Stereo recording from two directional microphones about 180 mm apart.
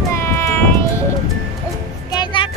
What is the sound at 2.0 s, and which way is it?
Music, 25° left (ahead or behind).